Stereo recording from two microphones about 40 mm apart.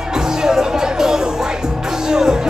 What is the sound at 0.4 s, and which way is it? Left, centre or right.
Music, centre.